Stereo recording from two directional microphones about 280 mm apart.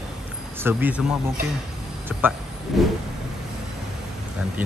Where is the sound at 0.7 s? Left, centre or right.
Centre.